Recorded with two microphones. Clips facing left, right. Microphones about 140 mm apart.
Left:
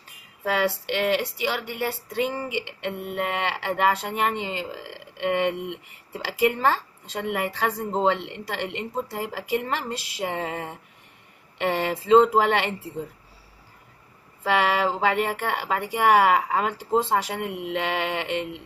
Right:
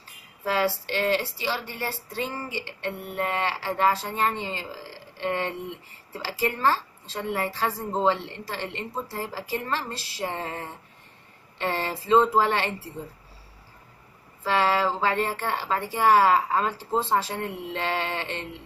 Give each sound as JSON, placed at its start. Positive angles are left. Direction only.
{"t": 0.7, "sound": "speech", "side_deg": 15}
{"t": 14.5, "sound": "speech", "side_deg": 15}